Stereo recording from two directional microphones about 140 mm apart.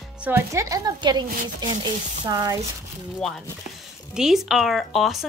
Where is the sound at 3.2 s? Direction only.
Centre (ahead or behind).